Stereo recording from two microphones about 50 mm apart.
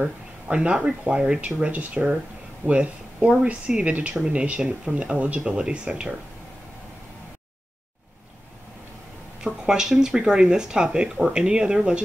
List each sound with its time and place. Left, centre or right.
0.0 s speech: right
1.4 s speech: right
9.4 s speech: centre